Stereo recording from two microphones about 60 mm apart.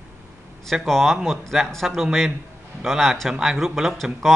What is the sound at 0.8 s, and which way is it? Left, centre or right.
Speech, centre.